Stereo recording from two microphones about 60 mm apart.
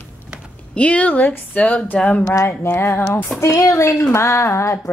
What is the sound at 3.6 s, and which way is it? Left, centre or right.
Speech, left.